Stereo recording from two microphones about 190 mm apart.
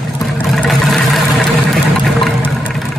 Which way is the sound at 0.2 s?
Centre (ahead or behind).